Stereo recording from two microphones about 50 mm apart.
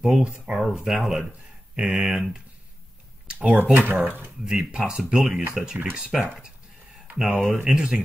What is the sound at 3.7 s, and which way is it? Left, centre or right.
Speech, right.